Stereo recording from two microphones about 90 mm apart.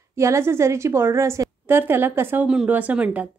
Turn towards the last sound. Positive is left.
turn(degrees=-15)  # may be behind; listen again after turning